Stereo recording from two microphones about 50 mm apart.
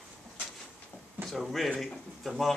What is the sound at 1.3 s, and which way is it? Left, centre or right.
Speech, centre.